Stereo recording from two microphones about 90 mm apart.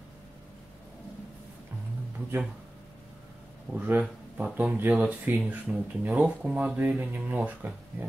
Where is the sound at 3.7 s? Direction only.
15° right (ahead or behind).